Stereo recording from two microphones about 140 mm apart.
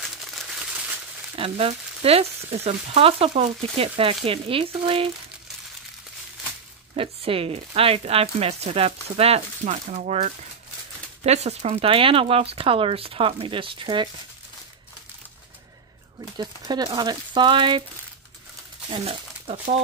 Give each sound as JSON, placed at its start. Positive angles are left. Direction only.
{"t": 0.0, "sound": "crumpling", "side_deg": 0}
{"t": 1.3, "sound": "speech", "side_deg": -45}
{"t": 7.0, "sound": "speech", "side_deg": -40}
{"t": 16.3, "sound": "speech", "side_deg": -30}
{"t": 18.9, "sound": "speech", "side_deg": -40}